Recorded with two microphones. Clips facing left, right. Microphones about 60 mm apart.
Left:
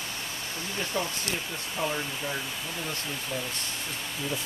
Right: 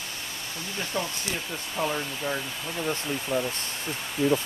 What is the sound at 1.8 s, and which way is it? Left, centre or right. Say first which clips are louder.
Speech: right 2 dB; centre.